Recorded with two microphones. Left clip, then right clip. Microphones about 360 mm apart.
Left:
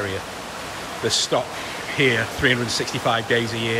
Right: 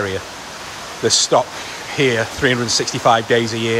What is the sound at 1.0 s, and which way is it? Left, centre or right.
Speech, centre.